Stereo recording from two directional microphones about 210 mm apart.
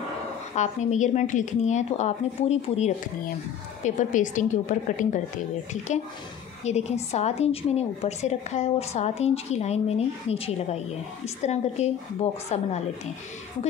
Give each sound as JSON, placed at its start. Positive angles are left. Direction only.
{"t": 0.6, "sound": "a woman's voice", "side_deg": 35}
{"t": 6.6, "sound": "a woman's voice", "side_deg": 30}